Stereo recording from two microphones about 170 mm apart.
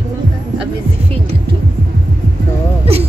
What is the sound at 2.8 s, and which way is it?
Speech, 35° right (ahead or behind).